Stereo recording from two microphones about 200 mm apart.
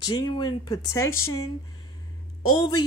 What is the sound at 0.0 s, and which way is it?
Speech, 20° left (ahead or behind).